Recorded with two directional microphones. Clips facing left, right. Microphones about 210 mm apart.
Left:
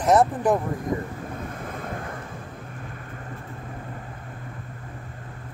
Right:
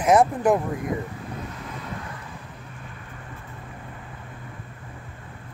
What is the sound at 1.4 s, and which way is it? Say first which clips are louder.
Waves: left 2 dB; 50° left (ahead or behind).